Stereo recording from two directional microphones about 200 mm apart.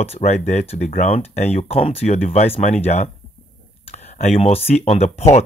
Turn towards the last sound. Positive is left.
turn(degrees=30)  # may be behind; listen again after turning